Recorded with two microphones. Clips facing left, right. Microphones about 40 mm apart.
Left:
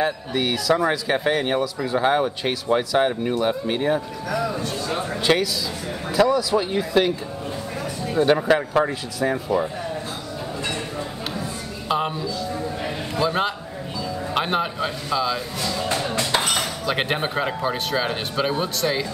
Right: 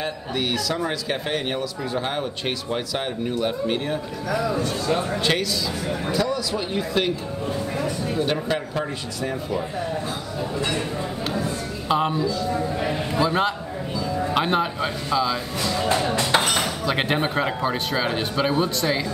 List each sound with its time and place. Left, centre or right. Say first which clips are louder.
0.0 s a man's voice: left 4 dB; centre
9.3 s speech: left 5 dB; left
11.9 s a man's voice: right 2 dB; centre
12.5 s a sound: right 3 dB; centre
14.3 s a man's voice: even; centre